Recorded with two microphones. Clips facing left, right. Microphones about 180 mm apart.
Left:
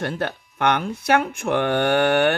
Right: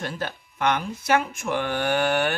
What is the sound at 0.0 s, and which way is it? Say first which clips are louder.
Speech: left 5 dB; 60° left (ahead or behind).